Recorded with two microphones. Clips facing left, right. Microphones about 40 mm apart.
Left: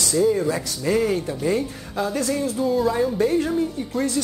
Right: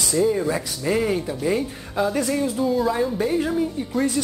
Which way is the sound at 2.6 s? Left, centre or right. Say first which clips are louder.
Left 2 dB; centre.